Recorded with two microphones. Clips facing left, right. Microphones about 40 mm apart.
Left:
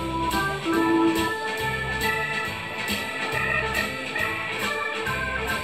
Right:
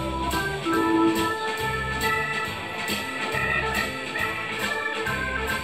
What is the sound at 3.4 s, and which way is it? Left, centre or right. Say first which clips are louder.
Music: even; centre.